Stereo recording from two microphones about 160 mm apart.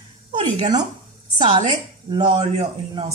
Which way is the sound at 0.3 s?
30° right (ahead or behind).